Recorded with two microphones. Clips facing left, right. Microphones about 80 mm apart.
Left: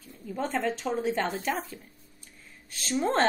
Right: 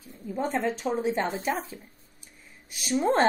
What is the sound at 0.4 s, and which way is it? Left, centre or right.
A woman's voice, centre.